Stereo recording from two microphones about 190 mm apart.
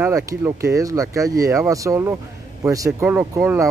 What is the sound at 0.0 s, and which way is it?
Speech, 15° right (ahead or behind).